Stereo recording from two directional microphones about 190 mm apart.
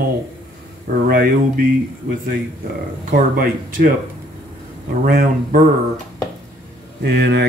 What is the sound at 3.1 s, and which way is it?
Speech, 45° right (ahead or behind).